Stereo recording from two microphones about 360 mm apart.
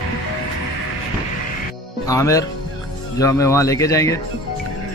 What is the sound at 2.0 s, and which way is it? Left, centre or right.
A man's voice, centre.